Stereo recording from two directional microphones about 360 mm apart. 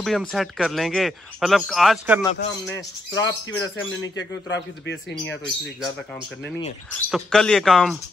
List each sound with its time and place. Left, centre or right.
0.0 s speech: centre
2.7 s speech: left
6.9 s speech: centre